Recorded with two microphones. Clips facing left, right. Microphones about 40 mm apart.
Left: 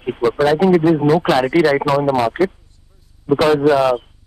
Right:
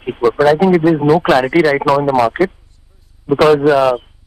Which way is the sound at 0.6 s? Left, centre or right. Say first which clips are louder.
Right 2 dB; centre.